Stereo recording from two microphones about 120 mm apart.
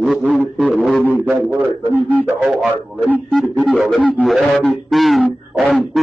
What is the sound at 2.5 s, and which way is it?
Speech, centre (ahead or behind).